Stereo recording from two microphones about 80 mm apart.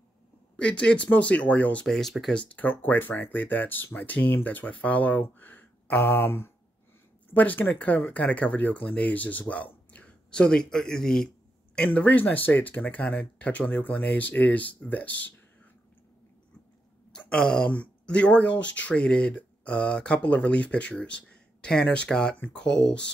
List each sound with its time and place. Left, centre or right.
0.6 s speech: centre
1.9 s speech: centre
2.3 s speech: centre
17.1 s speech: centre